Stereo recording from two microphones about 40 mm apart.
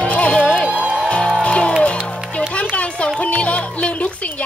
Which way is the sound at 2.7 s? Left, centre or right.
Left.